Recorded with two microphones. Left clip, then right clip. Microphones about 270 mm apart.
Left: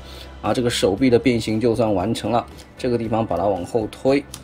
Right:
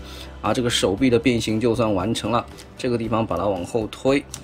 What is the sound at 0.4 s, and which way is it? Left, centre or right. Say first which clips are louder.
A man's voice: left 1 dB; centre.